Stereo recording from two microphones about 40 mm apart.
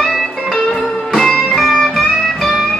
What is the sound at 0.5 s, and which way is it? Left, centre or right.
Music, centre.